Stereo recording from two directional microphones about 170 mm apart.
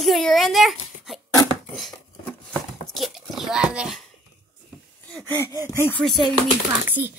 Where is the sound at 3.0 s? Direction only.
Centre (ahead or behind).